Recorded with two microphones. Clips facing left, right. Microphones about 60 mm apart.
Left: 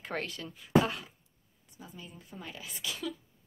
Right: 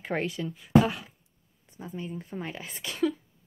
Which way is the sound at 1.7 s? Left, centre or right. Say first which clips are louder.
Right 11 dB; right.